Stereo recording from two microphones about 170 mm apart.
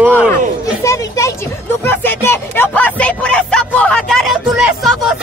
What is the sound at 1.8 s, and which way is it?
Music, 10° left (ahead or behind).